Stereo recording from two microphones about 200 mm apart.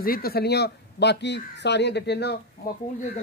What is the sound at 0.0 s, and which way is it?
Speech, 50° left (ahead or behind).